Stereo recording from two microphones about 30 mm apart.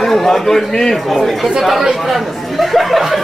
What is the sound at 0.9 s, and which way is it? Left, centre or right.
Speech, centre.